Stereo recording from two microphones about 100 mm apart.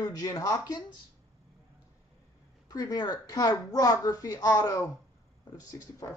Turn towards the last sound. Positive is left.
turn(degrees=35)  # may be behind; listen again after turning